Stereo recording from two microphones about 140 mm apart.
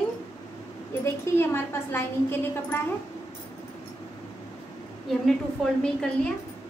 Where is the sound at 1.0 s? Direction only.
20° left (ahead or behind).